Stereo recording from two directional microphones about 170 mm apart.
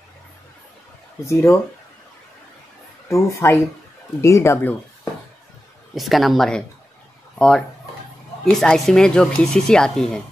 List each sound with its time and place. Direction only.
1.2 s speech: 15° left (ahead or behind)
3.1 s speech: 15° left (ahead or behind)
5.9 s speech: centre (ahead or behind)